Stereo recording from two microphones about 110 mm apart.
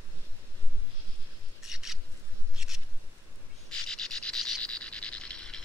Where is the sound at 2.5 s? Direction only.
5° right (ahead or behind).